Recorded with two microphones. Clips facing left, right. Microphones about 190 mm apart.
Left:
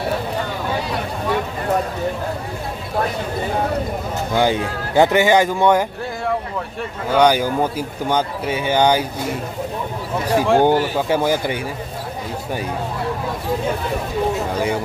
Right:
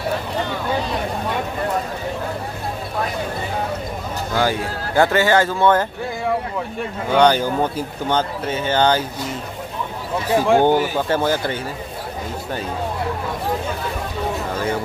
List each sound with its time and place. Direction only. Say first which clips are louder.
4.3 s speech: left 2 dB; 20° left (ahead or behind)
7.1 s speech: even; 10° left (ahead or behind)
10.3 s speech: even; centre (ahead or behind)
11.1 s speech: left 1 dB; 10° left (ahead or behind)